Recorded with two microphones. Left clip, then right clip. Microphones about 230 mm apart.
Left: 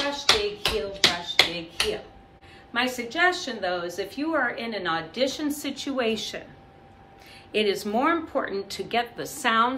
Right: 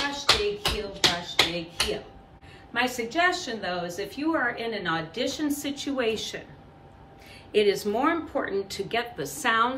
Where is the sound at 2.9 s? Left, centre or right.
Centre.